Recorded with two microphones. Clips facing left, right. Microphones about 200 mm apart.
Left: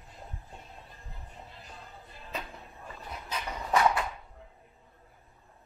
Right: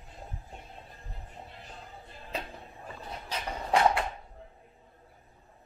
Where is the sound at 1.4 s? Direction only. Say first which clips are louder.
Right 2 dB; 30° right (ahead or behind).